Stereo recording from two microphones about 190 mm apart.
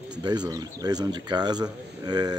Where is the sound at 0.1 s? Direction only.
20° right (ahead or behind).